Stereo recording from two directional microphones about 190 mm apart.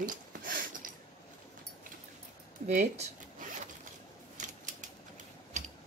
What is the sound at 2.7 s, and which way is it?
Speech, 40° right (ahead or behind).